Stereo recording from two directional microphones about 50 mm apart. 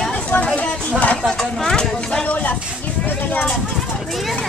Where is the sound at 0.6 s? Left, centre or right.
Left.